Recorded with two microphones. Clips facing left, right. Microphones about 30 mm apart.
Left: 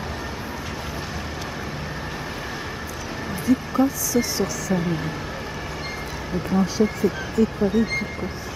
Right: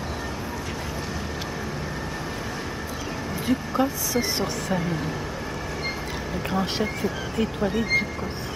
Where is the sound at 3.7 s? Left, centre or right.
Right.